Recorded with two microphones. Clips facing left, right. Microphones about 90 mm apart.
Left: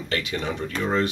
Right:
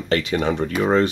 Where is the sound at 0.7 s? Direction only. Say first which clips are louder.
Right 5 dB; 10° right (ahead or behind).